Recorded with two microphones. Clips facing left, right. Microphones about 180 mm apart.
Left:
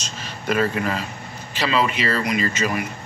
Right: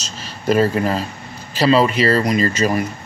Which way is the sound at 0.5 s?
35° right (ahead or behind).